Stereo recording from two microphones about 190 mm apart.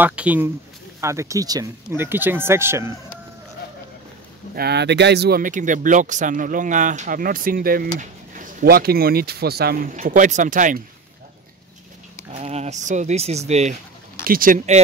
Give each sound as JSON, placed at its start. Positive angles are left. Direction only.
{"t": 0.0, "sound": "speech", "side_deg": -5}
{"t": 4.6, "sound": "speech", "side_deg": -60}
{"t": 9.9, "sound": "speech", "side_deg": -40}
{"t": 12.3, "sound": "speech", "side_deg": -35}
{"t": 14.2, "sound": "speech", "side_deg": -50}